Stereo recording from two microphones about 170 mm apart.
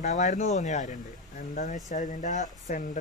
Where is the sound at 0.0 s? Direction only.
45° left (ahead or behind).